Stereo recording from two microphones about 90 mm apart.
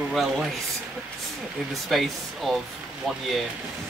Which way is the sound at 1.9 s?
Centre (ahead or behind).